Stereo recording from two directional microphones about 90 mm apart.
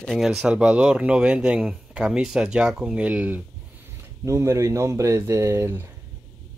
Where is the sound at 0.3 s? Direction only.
10° right (ahead or behind).